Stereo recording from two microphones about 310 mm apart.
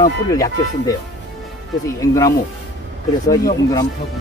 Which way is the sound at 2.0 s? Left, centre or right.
Centre.